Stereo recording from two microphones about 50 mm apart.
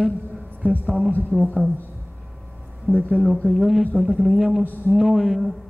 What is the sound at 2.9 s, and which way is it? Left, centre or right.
Speech, right.